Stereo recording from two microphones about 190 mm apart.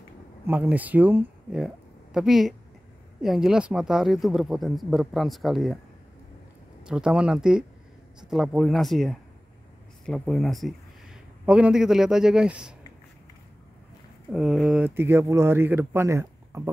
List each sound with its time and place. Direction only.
0.5 s speech: 10° right (ahead or behind)
6.9 s speech: 5° right (ahead or behind)
14.3 s speech: centre (ahead or behind)